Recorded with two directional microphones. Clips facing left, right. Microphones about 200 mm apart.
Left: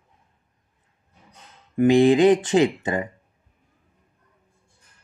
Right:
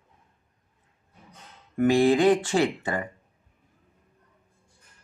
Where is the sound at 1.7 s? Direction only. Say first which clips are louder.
Left 4 dB; 20° left (ahead or behind).